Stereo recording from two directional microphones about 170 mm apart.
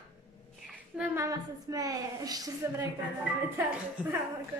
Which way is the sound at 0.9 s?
10° right (ahead or behind).